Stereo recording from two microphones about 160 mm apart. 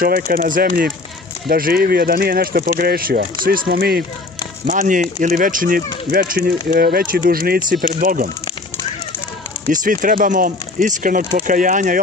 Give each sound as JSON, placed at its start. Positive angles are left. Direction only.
{"t": 0.0, "sound": "speech", "side_deg": -60}
{"t": 4.6, "sound": "speech", "side_deg": -60}
{"t": 9.7, "sound": "speech", "side_deg": -55}